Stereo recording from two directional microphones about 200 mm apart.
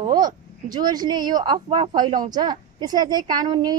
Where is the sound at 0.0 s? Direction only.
20° right (ahead or behind).